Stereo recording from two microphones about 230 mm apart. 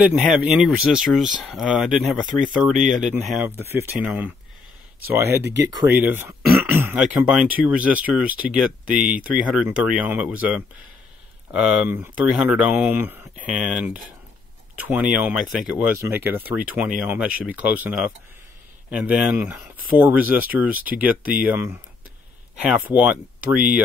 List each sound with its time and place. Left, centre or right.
0.0 s speech: centre
5.4 s speech: right
5.7 s speech: centre